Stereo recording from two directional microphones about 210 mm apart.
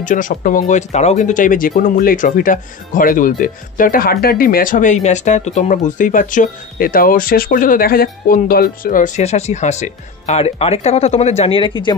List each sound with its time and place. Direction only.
0.0 s speech: 40° left (ahead or behind)